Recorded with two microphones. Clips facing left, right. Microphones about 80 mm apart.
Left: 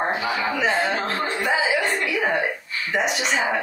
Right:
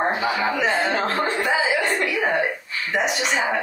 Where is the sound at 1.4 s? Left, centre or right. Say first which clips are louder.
Left 2 dB; centre.